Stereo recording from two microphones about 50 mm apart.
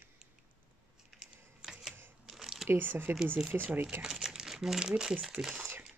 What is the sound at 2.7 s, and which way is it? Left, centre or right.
Speech, right.